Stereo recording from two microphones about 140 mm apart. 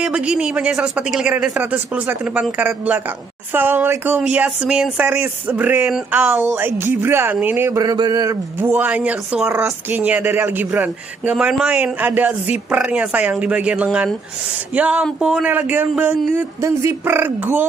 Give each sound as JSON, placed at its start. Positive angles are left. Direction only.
{"t": 0.0, "sound": "speech", "side_deg": -5}
{"t": 3.5, "sound": "speech", "side_deg": -15}
{"t": 7.8, "sound": "speech", "side_deg": -30}
{"t": 8.5, "sound": "speech", "side_deg": -15}